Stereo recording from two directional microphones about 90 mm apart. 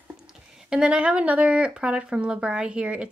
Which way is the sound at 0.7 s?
10° right (ahead or behind).